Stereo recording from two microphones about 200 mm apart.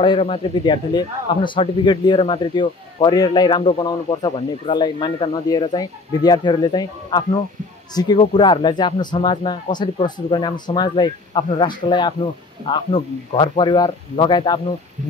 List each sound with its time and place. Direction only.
0.0 s speech: 25° left (ahead or behind)